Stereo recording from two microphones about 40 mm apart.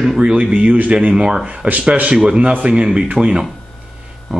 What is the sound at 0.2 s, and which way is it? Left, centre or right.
Speech, right.